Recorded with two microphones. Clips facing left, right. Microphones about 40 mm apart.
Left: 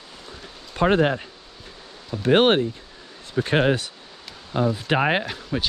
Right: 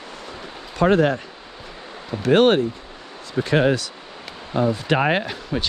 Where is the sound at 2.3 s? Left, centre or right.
Left.